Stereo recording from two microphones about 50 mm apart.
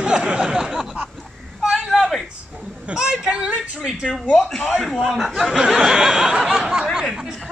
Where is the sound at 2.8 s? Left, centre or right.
Centre.